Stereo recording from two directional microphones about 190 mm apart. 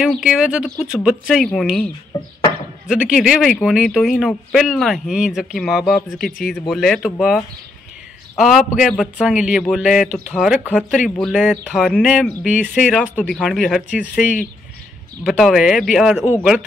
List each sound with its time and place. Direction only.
0.0 s speech: 5° right (ahead or behind)
2.1 s speech: 20° left (ahead or behind)
2.9 s speech: 5° right (ahead or behind)
15.2 s speech: centre (ahead or behind)